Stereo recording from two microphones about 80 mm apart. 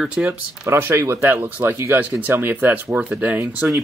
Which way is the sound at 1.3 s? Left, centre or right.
Right.